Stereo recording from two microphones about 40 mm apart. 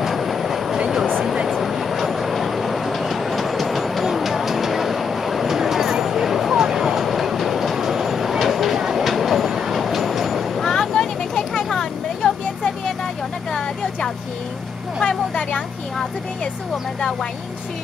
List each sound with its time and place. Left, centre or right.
0.0 s train: centre
1.2 s vehicle: centre
1.5 s train: centre
10.6 s vehicle: centre
13.5 s a sound: centre
15.0 s vehicle: left